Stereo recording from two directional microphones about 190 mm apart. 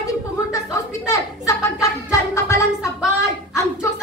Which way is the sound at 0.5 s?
15° left (ahead or behind).